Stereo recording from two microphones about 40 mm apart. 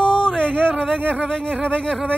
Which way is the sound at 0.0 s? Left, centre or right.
Left.